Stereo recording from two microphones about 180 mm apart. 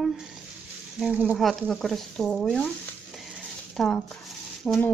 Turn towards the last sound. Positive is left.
turn(degrees=0)  # may be behind; listen again after turning